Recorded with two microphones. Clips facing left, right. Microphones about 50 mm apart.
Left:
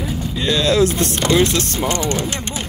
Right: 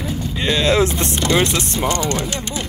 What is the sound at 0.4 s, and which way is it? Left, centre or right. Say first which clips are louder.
Speech: left 1 dB; right.